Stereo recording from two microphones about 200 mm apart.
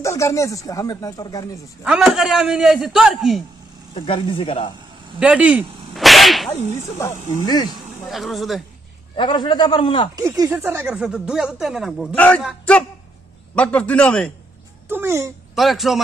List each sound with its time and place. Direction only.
0.0 s speech: 15° left (ahead or behind)
1.9 s speech: centre (ahead or behind)
3.9 s a man's voice: 25° left (ahead or behind)
5.2 s whip: 5° right (ahead or behind)
7.0 s speech: 15° left (ahead or behind)
8.1 s speech: centre (ahead or behind)
9.1 s a man's voice: 25° left (ahead or behind)
10.1 s speech: 15° right (ahead or behind); by 14.3 s 5° left (ahead or behind)
14.9 s speech: 10° right (ahead or behind)
15.5 s speech: centre (ahead or behind)